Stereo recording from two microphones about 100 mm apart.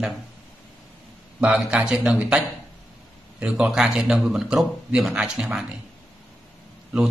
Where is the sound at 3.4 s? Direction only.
10° right (ahead or behind).